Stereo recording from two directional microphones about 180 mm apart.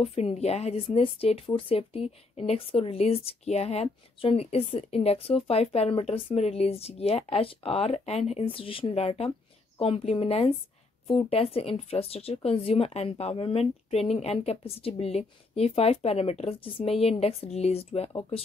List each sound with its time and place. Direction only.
0.0 s speech: 35° left (ahead or behind)